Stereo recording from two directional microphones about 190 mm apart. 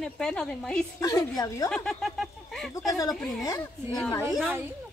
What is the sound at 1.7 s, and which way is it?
Speech, 5° left (ahead or behind).